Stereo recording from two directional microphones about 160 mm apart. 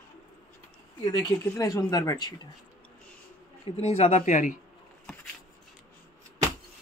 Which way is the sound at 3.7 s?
40° left (ahead or behind).